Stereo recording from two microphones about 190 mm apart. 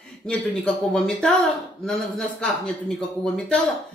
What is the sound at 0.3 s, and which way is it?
Speech, 5° left (ahead or behind).